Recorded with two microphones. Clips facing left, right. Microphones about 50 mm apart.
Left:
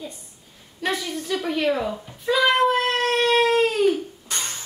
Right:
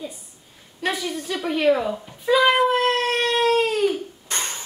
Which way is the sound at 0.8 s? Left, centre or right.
Centre.